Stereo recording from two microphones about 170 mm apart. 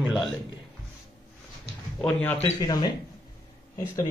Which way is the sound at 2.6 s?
25° left (ahead or behind).